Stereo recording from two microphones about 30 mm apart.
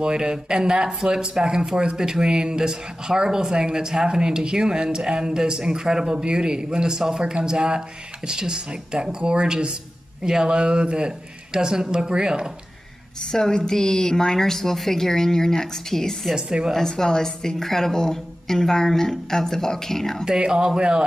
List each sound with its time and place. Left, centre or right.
0.0 s speech: right
10.2 s speech: right
13.2 s a woman's voice: left
20.2 s speech: right